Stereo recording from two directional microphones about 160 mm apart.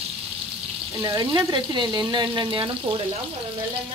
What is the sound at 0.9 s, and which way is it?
Frying, 20° right (ahead or behind).